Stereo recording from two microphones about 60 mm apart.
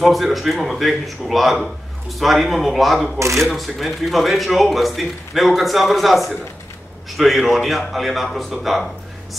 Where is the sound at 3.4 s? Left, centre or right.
Centre.